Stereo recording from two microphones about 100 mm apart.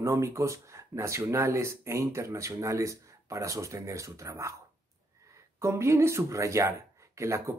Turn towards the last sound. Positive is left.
turn(degrees=-30)  # may be behind; listen again after turning